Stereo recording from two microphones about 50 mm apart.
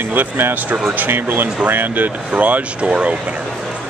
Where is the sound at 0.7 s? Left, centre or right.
Right.